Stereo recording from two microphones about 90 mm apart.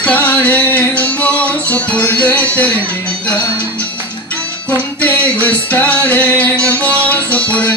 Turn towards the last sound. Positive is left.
turn(degrees=15)  # may be behind; listen again after turning